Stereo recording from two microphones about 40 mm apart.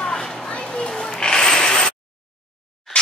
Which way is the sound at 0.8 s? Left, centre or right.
Centre.